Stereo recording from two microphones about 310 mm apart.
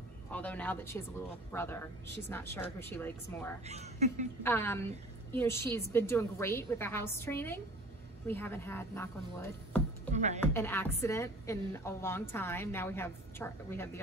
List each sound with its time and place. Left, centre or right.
0.3 s a woman's voice: centre
3.6 s a woman's voice: right
4.4 s a woman's voice: centre
10.1 s a woman's voice: right
10.5 s a woman's voice: centre